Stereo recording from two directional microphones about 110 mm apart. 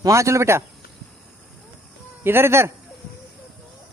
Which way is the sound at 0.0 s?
25° right (ahead or behind).